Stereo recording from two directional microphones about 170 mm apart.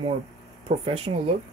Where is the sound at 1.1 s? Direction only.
50° right (ahead or behind).